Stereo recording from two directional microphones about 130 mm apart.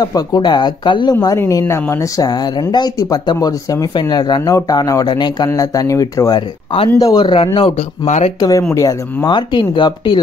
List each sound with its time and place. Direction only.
0.0 s speech: 30° left (ahead or behind)
1.2 s speech: 25° left (ahead or behind); by 8.1 s 45° left (ahead or behind)
8.4 s speech: 25° left (ahead or behind)